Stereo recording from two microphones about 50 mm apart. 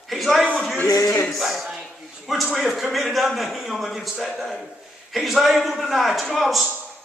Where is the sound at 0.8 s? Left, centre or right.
Left.